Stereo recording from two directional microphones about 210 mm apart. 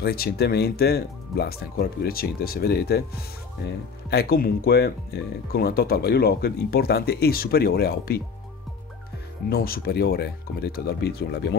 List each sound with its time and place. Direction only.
0.0 s speech: 45° left (ahead or behind)
9.5 s speech: 45° left (ahead or behind)